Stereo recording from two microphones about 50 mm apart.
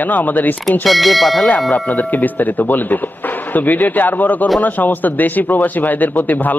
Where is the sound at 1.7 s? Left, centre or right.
Left.